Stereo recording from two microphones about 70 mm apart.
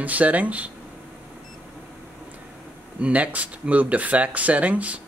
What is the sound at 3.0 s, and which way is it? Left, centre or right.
Speech, centre.